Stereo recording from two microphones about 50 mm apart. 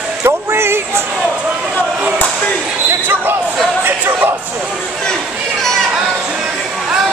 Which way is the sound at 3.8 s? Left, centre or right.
Right.